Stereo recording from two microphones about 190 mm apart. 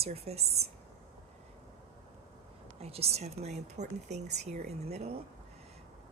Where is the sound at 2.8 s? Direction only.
30° right (ahead or behind).